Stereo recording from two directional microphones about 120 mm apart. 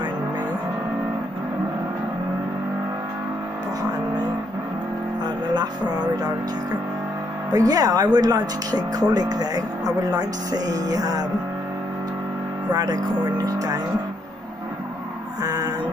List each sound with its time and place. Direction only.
5.2 s music: 35° right (ahead or behind)
7.5 s speech: 30° right (ahead or behind)
12.7 s speech: 30° right (ahead or behind)
15.4 s speech: 30° right (ahead or behind)